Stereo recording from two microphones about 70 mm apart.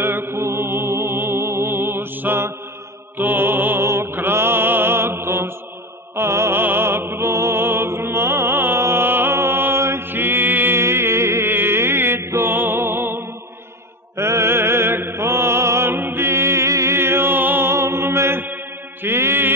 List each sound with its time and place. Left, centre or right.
0.0 s music: right
14.1 s mantra: right
19.0 s music: right